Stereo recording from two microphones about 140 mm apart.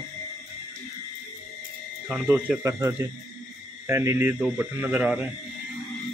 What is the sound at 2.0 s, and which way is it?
A man's voice, 15° right (ahead or behind).